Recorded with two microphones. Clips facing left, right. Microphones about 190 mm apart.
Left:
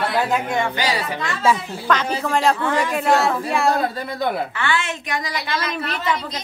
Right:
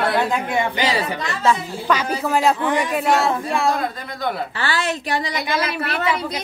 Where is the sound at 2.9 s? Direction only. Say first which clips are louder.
Even; centre (ahead or behind).